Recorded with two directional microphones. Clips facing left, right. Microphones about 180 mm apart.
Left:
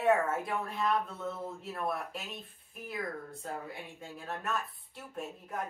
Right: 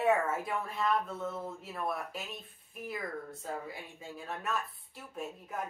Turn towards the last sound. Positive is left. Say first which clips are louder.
# even
turn(degrees=0)  # may be behind; listen again after turning